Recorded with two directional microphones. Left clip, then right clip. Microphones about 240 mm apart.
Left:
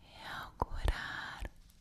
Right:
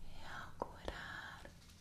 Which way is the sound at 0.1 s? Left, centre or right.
Left.